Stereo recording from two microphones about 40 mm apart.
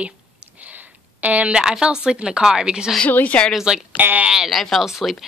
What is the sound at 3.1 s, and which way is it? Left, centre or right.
Speech, left.